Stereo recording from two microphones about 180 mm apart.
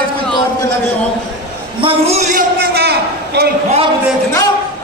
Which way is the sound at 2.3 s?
60° right (ahead or behind).